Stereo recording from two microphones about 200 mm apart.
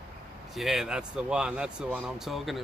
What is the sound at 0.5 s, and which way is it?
Speech, centre (ahead or behind).